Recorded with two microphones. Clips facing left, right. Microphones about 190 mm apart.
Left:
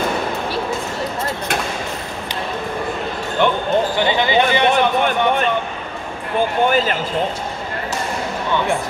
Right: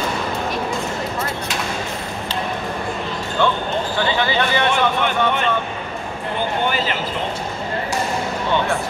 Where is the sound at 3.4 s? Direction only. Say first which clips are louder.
Left 4 dB; 20° left (ahead or behind).